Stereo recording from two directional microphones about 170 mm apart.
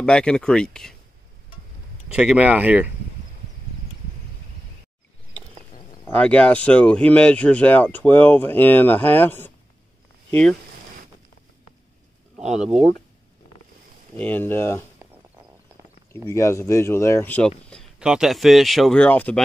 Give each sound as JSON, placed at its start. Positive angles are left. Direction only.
{"t": 0.0, "sound": "speech", "side_deg": 5}
{"t": 2.0, "sound": "speech", "side_deg": -5}
{"t": 6.0, "sound": "speech", "side_deg": 10}
{"t": 14.1, "sound": "speech", "side_deg": 10}
{"t": 16.3, "sound": "speech", "side_deg": 15}
{"t": 17.6, "sound": "speech", "side_deg": 0}